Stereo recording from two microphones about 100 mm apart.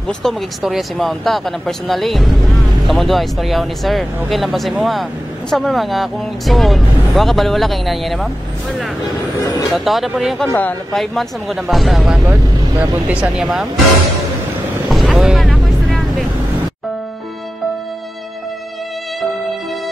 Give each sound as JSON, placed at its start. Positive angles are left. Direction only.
{"t": 0.2, "sound": "speech", "side_deg": 0}
{"t": 9.4, "sound": "vehicle", "side_deg": 40}
{"t": 9.7, "sound": "speech", "side_deg": 0}
{"t": 10.4, "sound": "speech", "side_deg": 15}
{"t": 10.9, "sound": "speech", "side_deg": 0}
{"t": 12.0, "sound": "speech", "side_deg": -15}
{"t": 14.9, "sound": "boat", "side_deg": 0}
{"t": 15.4, "sound": "music", "side_deg": 10}